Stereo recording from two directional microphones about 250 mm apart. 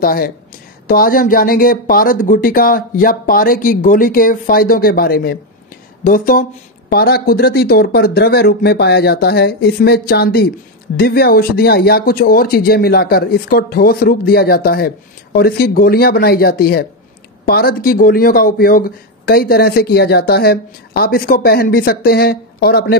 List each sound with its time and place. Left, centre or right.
0.0 s speech: left